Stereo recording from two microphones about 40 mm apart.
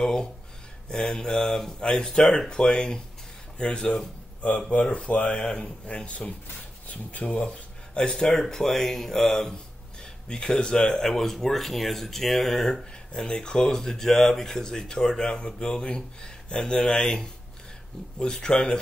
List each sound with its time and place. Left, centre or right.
0.0 s speech: centre; by 7.2 s left
7.4 s speech: left
18.3 s speech: centre